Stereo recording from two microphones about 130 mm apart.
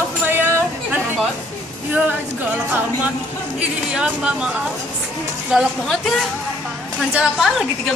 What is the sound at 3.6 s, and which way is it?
Speech, 10° right (ahead or behind).